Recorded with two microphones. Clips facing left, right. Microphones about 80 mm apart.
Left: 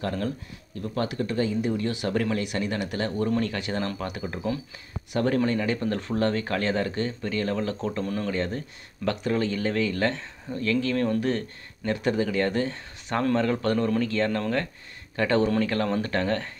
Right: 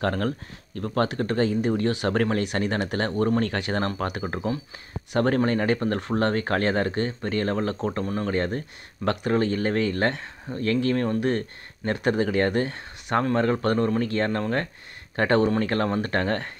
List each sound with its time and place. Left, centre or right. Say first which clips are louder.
0.0 s speech: right 4 dB; right
8.3 s speech: right 3 dB; right